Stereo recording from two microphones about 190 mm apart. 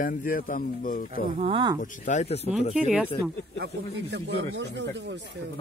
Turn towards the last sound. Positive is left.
turn(degrees=-65)  # may be behind; listen again after turning